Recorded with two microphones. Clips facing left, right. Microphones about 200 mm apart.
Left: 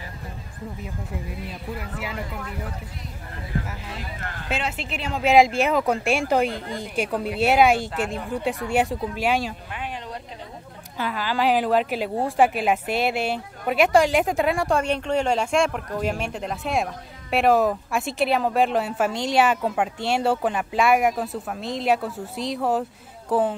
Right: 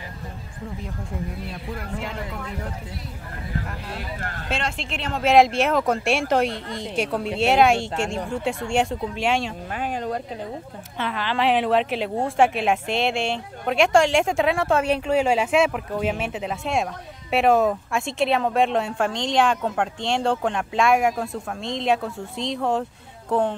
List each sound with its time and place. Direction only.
0.8 s speech: 5° left (ahead or behind)
4.5 s speech: 5° left (ahead or behind)
9.7 s speech: 45° right (ahead or behind)
11.0 s speech: 5° left (ahead or behind)